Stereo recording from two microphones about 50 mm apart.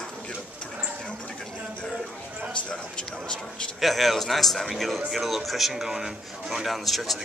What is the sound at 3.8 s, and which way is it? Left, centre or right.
A man's voice, centre.